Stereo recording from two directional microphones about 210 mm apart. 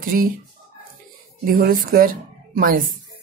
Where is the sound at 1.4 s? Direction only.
45° right (ahead or behind).